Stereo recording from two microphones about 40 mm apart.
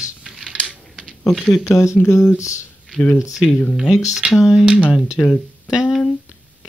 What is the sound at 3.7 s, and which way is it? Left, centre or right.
Speech, centre.